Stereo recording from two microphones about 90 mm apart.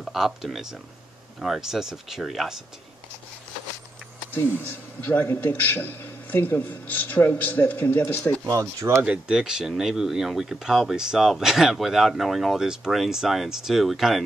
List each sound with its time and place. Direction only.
0.0 s speech: 5° right (ahead or behind)
4.3 s a man's voice: 20° left (ahead or behind)
8.5 s speech: 35° right (ahead or behind)
9.0 s speech: 10° right (ahead or behind)